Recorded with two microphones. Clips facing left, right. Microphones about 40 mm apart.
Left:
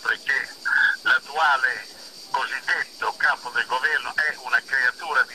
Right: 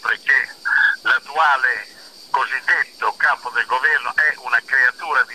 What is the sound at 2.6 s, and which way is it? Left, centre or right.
Speech, right.